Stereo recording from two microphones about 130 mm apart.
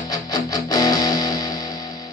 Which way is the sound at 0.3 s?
30° left (ahead or behind).